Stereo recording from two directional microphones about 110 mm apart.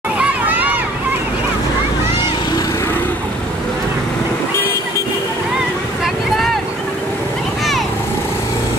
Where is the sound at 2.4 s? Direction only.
40° left (ahead or behind).